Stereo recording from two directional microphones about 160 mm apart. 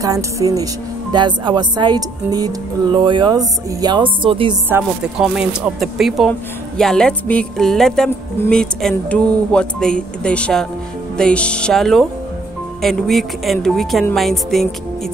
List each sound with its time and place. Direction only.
0.0 s speech: 20° right (ahead or behind)
4.6 s speech: 15° right (ahead or behind)